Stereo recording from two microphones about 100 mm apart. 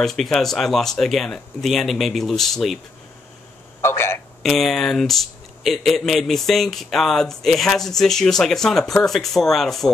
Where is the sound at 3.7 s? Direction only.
25° left (ahead or behind).